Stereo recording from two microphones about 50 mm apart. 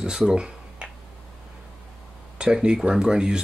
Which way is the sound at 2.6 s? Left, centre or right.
Centre.